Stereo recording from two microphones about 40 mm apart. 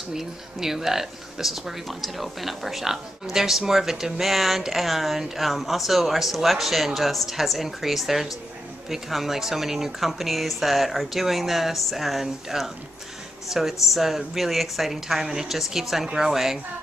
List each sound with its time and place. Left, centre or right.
0.1 s speech: centre